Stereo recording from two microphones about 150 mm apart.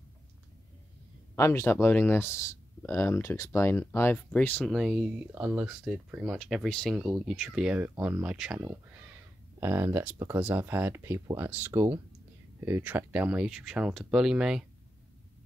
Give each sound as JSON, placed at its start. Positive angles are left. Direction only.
{"t": 1.3, "sound": "speech", "side_deg": 20}
{"t": 4.6, "sound": "speech", "side_deg": 0}